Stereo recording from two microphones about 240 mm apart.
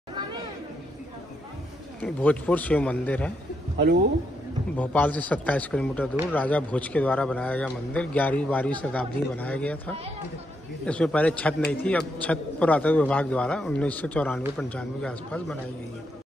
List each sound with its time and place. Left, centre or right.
2.0 s a man's voice: centre
3.7 s speech: right
4.7 s a man's voice: centre